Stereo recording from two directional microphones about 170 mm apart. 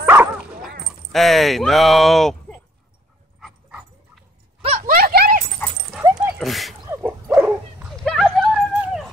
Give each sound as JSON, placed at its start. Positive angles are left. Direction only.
{"t": 0.0, "sound": "dog", "side_deg": -10}
{"t": 0.8, "sound": "speech", "side_deg": 0}
{"t": 3.3, "sound": "dog", "side_deg": 0}
{"t": 4.8, "sound": "a sound", "side_deg": -60}
{"t": 5.6, "sound": "dog", "side_deg": 10}
{"t": 6.1, "sound": "dog", "side_deg": -5}
{"t": 6.9, "sound": "dog", "side_deg": -15}
{"t": 7.3, "sound": "bow-wow", "side_deg": -10}
{"t": 7.9, "sound": "a sound", "side_deg": 5}